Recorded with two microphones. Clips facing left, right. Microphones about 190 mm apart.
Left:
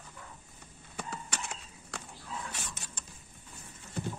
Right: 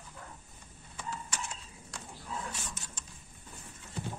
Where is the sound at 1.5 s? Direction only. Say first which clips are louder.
Left 2 dB; 70° left (ahead or behind).